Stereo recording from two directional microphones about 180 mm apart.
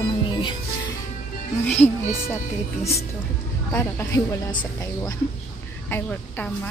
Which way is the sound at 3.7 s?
15° left (ahead or behind).